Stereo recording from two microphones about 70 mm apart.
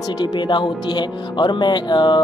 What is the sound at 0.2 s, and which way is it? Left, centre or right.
Speech, left.